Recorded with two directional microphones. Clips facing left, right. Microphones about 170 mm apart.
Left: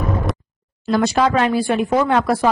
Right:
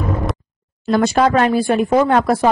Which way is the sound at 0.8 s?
50° right (ahead or behind).